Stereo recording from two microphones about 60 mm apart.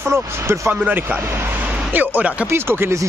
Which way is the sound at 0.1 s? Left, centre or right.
Right.